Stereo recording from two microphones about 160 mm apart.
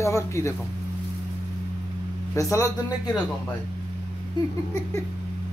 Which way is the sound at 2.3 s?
20° left (ahead or behind).